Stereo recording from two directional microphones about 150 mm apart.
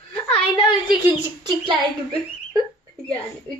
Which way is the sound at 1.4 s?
30° right (ahead or behind).